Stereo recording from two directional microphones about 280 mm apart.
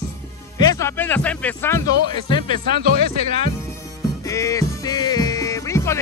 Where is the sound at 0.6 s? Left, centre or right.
Centre.